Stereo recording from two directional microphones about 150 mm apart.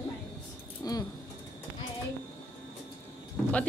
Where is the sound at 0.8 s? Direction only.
25° left (ahead or behind).